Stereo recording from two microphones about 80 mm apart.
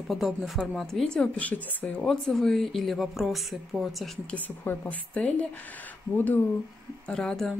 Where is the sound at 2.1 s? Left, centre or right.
Centre.